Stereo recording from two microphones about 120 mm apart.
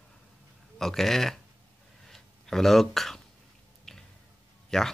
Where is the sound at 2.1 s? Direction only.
5° left (ahead or behind).